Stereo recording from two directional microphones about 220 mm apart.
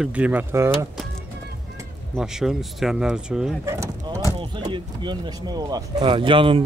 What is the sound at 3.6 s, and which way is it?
Speech, 15° right (ahead or behind).